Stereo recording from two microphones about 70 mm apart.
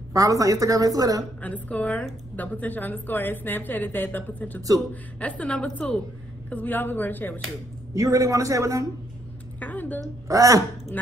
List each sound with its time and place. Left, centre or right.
0.1 s a woman's voice: right
1.4 s a woman's voice: centre
7.9 s a man's voice: right
9.6 s a sound: left
10.2 s a man's voice: right